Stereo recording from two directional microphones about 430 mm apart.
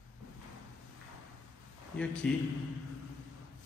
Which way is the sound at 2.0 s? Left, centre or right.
Centre.